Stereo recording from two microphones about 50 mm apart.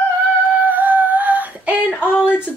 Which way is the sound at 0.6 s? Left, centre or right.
Right.